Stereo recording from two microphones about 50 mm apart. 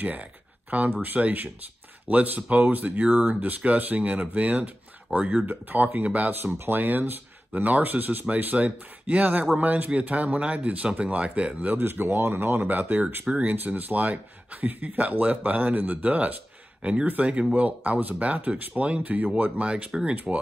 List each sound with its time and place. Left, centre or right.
0.0 s speech: right
6.3 s speech: right
11.8 s speech: right
19.6 s speech: right